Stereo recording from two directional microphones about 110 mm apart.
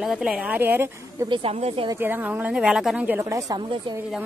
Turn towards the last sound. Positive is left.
turn(degrees=-10)  # may be behind; listen again after turning